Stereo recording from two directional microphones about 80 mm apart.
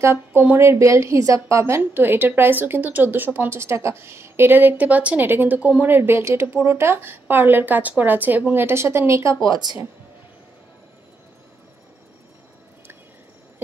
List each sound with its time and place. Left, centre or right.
0.0 s a woman's voice: right
1.8 s a woman's voice: right